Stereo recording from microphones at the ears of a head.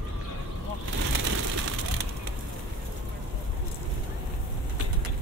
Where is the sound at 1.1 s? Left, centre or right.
Right.